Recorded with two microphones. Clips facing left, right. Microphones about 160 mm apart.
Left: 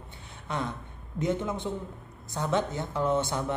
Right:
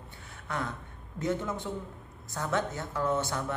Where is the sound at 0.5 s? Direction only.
25° left (ahead or behind).